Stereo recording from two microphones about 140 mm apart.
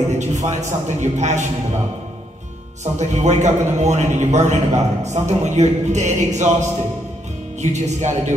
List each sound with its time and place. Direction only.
0.1 s a man's voice: 55° right (ahead or behind)
2.8 s a man's voice: 55° right (ahead or behind)